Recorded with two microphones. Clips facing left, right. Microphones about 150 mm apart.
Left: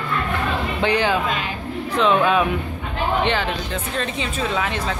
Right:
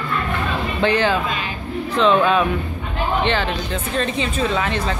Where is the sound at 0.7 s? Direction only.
15° left (ahead or behind).